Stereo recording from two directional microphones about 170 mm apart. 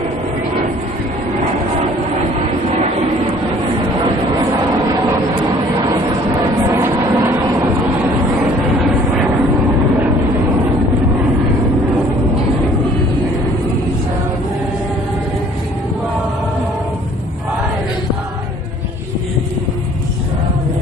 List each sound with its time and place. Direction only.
6.7 s train: 15° right (ahead or behind)